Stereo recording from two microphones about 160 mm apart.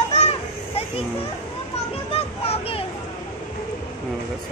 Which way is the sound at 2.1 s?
40° left (ahead or behind).